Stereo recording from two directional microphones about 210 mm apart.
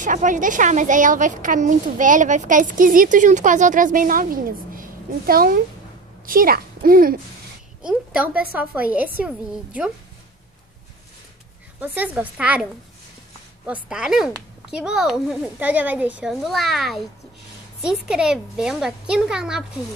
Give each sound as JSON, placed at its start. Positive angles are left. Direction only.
{"t": 0.0, "sound": "a woman's voice", "side_deg": -40}
{"t": 7.8, "sound": "a woman's voice", "side_deg": -5}
{"t": 11.8, "sound": "a woman's voice", "side_deg": -10}
{"t": 13.7, "sound": "a child's voice", "side_deg": -5}